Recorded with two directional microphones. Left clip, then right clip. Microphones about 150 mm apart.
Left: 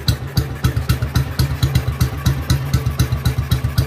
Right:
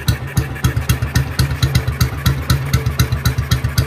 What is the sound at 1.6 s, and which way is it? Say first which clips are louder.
Vehicle: right 3 dB; 20° right (ahead or behind).